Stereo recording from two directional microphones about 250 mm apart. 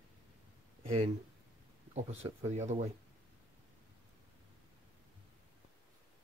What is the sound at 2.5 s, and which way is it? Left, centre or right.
Speech, right.